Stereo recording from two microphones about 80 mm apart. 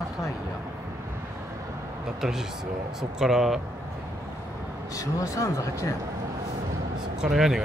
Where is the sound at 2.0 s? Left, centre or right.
Centre.